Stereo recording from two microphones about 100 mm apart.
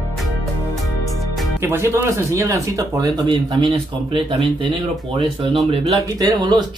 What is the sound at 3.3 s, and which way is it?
Speech, 55° right (ahead or behind).